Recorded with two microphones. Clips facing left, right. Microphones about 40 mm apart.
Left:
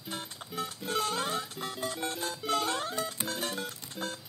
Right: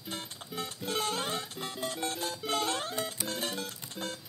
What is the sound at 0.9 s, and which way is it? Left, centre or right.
Music, centre.